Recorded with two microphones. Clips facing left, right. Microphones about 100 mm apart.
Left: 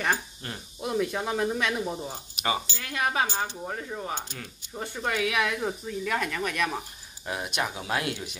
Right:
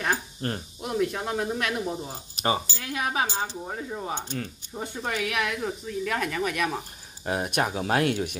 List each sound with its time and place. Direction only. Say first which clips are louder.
0.4 s speech: right 8 dB; 45° right (ahead or behind)
0.7 s speech: left 1 dB; centre (ahead or behind)
2.4 s speech: right 3 dB; 30° right (ahead or behind)
2.8 s speech: even; 5° right (ahead or behind)
7.2 s speech: right 4 dB; 40° right (ahead or behind)